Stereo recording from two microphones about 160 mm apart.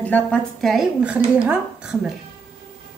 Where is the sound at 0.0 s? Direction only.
10° left (ahead or behind).